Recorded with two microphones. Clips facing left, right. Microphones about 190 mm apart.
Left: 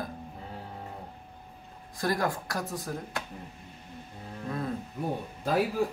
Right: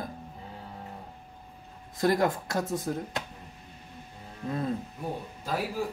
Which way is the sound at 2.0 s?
20° right (ahead or behind).